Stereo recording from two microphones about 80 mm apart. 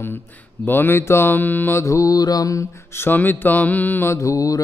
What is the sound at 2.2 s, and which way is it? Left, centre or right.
Mantra, left.